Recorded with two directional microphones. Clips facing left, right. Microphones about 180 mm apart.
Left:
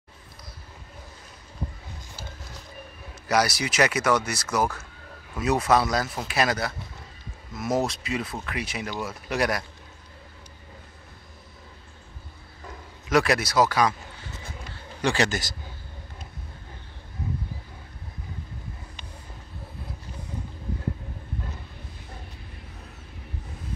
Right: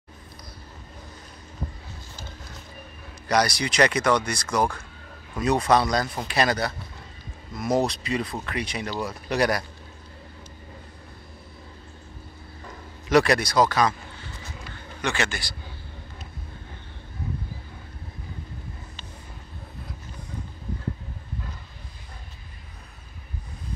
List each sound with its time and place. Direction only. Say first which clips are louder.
3.3 s speech: right 1 dB; 5° left (ahead or behind)
12.6 s speech: right 2 dB; centre (ahead or behind)
14.7 s a sound: left 3 dB; 30° left (ahead or behind)